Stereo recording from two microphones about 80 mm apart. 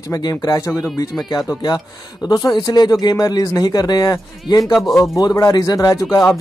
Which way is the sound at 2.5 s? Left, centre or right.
Left.